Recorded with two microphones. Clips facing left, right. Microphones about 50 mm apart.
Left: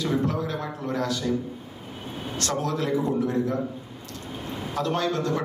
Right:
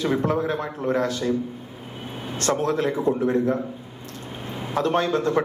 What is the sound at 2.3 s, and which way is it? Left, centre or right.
Speech, right.